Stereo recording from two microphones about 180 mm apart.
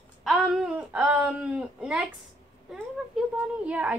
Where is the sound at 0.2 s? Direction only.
Centre (ahead or behind).